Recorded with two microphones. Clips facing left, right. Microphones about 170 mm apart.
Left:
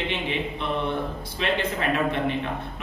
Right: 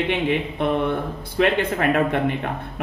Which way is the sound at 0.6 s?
55° right (ahead or behind).